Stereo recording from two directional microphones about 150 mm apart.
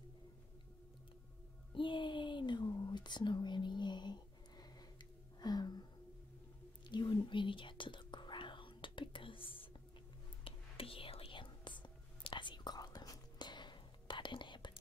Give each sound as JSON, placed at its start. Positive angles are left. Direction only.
{"t": 1.7, "sound": "whispering", "side_deg": 35}
{"t": 5.4, "sound": "a sound", "side_deg": 30}
{"t": 6.9, "sound": "whispering", "side_deg": 30}